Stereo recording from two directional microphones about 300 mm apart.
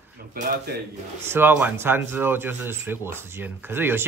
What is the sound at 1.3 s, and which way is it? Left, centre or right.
A woman's voice, centre.